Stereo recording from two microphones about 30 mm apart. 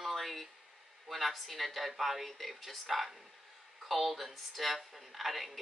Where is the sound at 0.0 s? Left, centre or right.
Centre.